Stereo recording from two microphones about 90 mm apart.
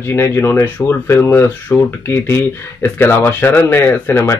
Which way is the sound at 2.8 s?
25° left (ahead or behind).